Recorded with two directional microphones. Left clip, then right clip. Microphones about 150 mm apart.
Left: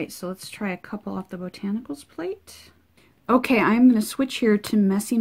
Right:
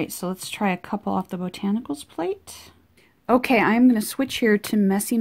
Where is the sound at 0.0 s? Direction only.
35° right (ahead or behind).